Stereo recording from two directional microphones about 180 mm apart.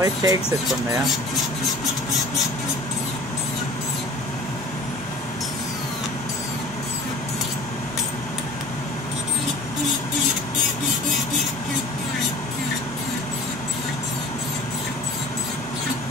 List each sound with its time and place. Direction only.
0.0 s speech: 20° right (ahead or behind)